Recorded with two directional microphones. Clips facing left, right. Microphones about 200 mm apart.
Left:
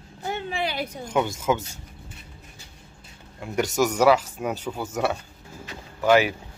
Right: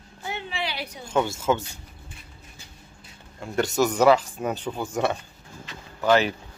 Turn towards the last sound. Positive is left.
turn(degrees=10)  # may be behind; listen again after turning